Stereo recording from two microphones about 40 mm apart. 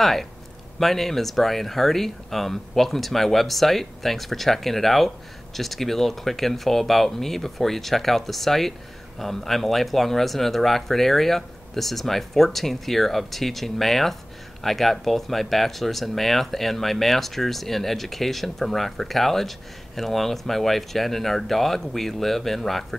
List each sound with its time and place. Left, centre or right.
0.0 s speech: centre